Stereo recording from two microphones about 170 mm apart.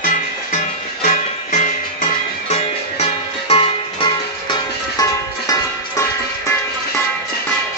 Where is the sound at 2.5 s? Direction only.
35° left (ahead or behind); by 6.0 s 20° left (ahead or behind).